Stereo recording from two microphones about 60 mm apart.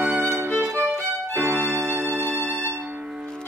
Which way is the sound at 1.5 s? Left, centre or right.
Right.